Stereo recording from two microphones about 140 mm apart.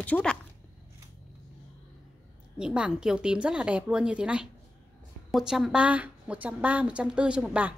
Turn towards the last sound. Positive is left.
turn(degrees=-5)  # may be behind; listen again after turning